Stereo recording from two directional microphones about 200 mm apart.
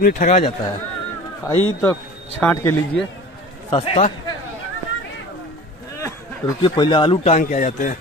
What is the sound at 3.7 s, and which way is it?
Speech, 30° left (ahead or behind).